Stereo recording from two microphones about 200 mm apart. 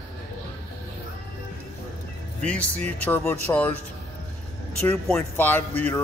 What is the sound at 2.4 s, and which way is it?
Speech, 5° left (ahead or behind).